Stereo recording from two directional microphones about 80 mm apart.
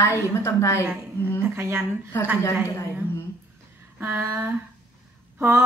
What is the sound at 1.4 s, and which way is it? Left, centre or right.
Speech, right.